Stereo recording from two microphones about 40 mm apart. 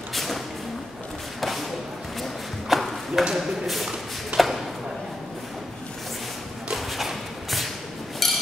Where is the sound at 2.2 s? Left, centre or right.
Centre.